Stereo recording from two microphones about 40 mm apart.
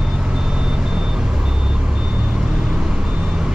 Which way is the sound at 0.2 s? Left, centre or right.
Centre.